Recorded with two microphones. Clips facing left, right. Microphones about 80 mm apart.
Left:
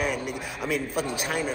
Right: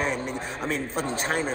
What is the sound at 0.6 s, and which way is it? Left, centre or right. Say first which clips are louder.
Speech: left 1 dB; right.